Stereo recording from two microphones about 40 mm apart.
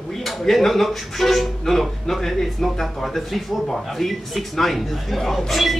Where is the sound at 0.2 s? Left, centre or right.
Centre.